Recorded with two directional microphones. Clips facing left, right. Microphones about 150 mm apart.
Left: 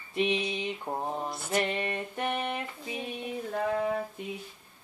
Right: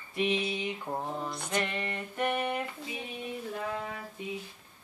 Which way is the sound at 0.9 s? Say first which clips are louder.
Left 1 dB; 25° left (ahead or behind).